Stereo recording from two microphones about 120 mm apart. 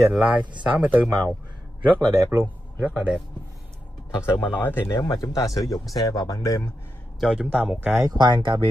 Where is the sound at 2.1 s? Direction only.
20° right (ahead or behind).